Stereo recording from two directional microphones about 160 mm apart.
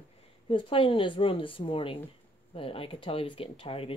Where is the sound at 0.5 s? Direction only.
35° left (ahead or behind).